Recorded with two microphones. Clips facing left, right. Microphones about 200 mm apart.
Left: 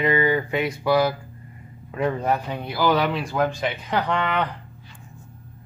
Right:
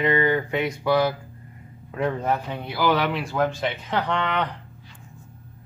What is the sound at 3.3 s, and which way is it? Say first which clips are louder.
Speech: left 1 dB; 10° left (ahead or behind).